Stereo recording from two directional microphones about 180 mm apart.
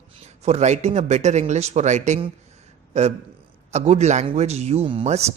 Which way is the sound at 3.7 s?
40° right (ahead or behind).